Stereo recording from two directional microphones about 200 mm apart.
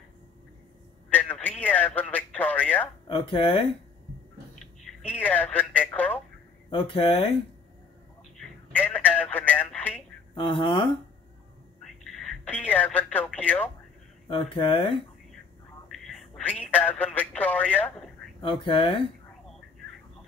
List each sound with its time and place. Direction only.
1.1 s radio: 10° left (ahead or behind)
3.1 s speech: 25° left (ahead or behind)
4.6 s speech: 5° left (ahead or behind)
6.7 s speech: 25° left (ahead or behind)
8.4 s telephone: 5° left (ahead or behind)
10.3 s speech: 25° left (ahead or behind)
11.8 s speech: centre (ahead or behind)
14.3 s speech: 25° left (ahead or behind)
15.9 s speech: centre (ahead or behind)
18.4 s speech: 25° left (ahead or behind)